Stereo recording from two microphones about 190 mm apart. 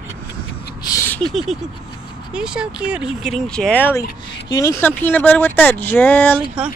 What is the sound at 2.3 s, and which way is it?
Speech, 5° right (ahead or behind).